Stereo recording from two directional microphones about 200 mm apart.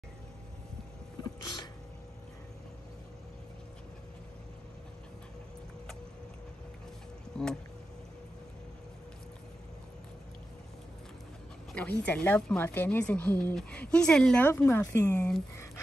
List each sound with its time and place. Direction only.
1.4 s sneeze: 20° left (ahead or behind)
7.3 s speech: 5° left (ahead or behind)
11.7 s a woman's voice: 5° left (ahead or behind)